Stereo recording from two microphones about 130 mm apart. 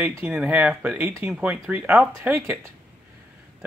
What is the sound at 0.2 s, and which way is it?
Speech, 10° right (ahead or behind).